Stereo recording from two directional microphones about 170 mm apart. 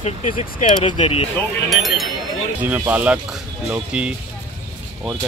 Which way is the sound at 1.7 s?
Centre (ahead or behind).